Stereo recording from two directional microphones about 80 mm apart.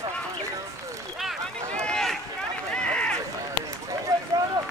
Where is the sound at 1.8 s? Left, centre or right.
Centre.